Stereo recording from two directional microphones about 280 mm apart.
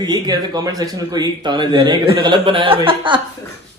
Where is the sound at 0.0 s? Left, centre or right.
Centre.